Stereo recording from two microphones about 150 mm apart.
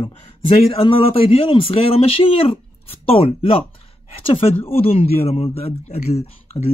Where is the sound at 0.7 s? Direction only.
40° left (ahead or behind).